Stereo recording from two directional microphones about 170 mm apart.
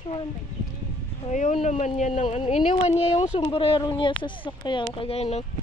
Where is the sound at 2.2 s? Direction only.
35° left (ahead or behind).